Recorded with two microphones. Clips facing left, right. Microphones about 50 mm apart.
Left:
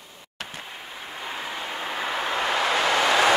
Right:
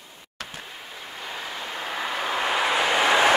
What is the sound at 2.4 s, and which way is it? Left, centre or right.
Vehicle, centre.